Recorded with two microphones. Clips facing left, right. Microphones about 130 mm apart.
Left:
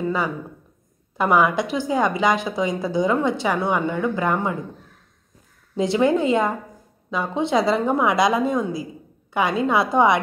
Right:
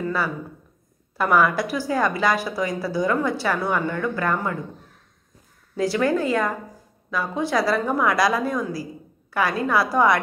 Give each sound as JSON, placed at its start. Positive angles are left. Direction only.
{"t": 0.0, "sound": "a sound", "side_deg": 20}
{"t": 1.1, "sound": "a woman's voice", "side_deg": 20}
{"t": 5.8, "sound": "a woman's voice", "side_deg": 20}